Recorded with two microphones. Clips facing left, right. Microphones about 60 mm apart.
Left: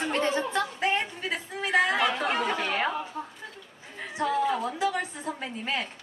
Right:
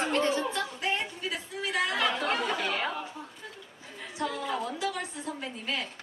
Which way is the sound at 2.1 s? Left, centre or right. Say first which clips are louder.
Left 2 dB; centre.